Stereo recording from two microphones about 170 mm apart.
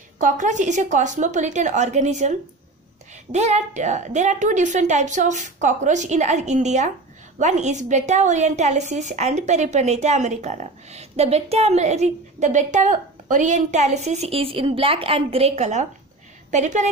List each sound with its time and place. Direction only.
0.2 s a woman's voice: 45° right (ahead or behind)